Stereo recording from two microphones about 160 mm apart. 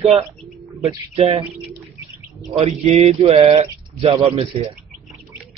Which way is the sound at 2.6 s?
40° right (ahead or behind).